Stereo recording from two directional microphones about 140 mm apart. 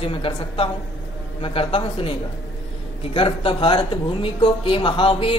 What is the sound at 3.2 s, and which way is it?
Speech, 40° left (ahead or behind).